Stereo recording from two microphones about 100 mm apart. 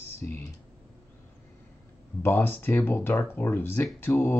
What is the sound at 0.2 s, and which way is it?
Speech, 25° left (ahead or behind).